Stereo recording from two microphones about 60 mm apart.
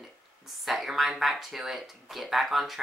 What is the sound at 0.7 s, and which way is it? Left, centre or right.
Speech, centre.